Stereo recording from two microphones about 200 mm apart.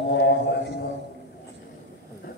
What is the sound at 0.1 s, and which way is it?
Music, 60° left (ahead or behind).